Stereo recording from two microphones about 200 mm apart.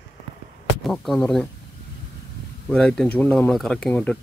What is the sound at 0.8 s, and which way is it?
Speech, centre (ahead or behind).